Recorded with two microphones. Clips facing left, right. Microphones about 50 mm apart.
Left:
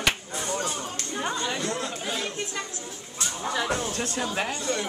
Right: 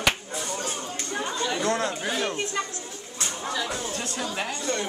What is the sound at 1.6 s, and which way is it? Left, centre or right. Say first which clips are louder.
Chatter: right 4 dB; right.